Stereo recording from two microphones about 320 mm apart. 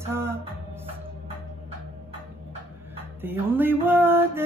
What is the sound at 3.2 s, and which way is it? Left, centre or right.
Music, centre.